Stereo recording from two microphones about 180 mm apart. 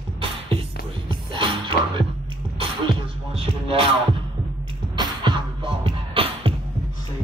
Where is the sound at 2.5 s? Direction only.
30° right (ahead or behind).